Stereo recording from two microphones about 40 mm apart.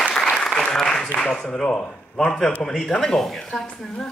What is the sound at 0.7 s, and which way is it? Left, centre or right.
Speech, centre.